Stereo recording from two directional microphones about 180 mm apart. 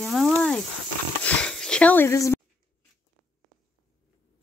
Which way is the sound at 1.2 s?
5° left (ahead or behind).